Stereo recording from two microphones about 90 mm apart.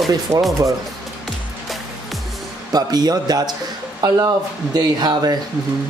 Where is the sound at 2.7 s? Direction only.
45° right (ahead or behind).